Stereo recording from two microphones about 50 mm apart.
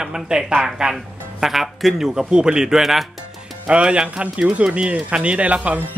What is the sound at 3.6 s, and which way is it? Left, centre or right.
Speech, right.